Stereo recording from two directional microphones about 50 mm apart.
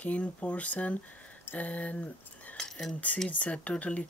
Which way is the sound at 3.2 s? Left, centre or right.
Left.